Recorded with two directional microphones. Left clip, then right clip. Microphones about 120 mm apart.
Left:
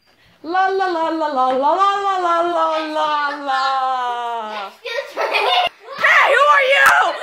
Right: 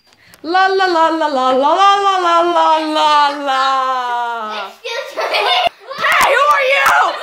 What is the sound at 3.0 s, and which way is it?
Speech, 70° right (ahead or behind).